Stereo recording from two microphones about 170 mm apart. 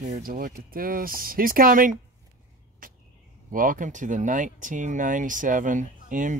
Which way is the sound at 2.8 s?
55° right (ahead or behind).